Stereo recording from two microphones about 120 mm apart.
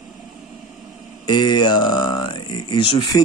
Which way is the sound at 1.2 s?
40° left (ahead or behind).